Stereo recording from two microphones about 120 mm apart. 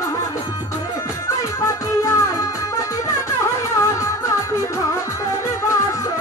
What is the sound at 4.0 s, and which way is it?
Music, 25° left (ahead or behind).